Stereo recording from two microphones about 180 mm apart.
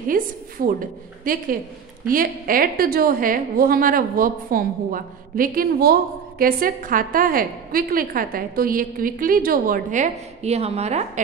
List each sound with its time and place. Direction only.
0.1 s a woman's voice: 50° right (ahead or behind)